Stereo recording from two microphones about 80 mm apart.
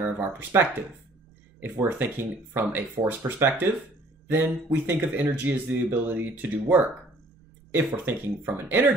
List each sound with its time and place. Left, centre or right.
0.0 s speech: right